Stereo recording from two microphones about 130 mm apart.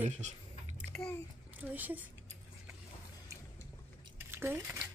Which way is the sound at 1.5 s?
15° right (ahead or behind).